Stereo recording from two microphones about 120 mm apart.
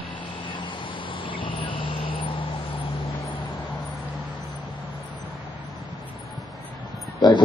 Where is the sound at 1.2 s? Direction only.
45° left (ahead or behind).